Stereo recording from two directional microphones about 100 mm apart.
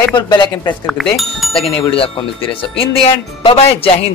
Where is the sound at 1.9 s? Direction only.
65° left (ahead or behind).